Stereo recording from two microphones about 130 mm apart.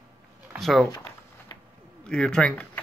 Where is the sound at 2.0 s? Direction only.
5° left (ahead or behind).